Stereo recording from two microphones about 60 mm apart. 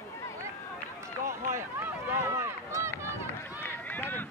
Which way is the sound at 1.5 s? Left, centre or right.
Right.